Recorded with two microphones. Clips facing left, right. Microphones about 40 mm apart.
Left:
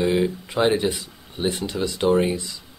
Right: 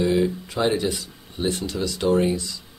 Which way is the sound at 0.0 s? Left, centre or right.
Left.